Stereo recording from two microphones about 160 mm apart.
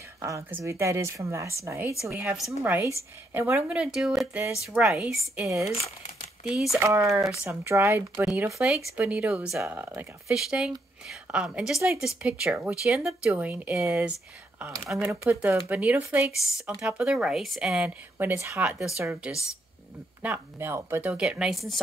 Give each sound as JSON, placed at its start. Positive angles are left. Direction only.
{"t": 0.2, "sound": "speech", "side_deg": -15}
{"t": 6.5, "sound": "a woman's voice", "side_deg": 0}
{"t": 6.8, "sound": "speech", "side_deg": -20}
{"t": 8.5, "sound": "a woman's voice", "side_deg": -5}